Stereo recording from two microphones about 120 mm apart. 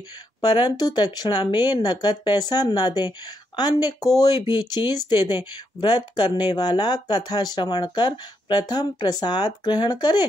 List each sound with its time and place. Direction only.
0.4 s speech: 40° left (ahead or behind)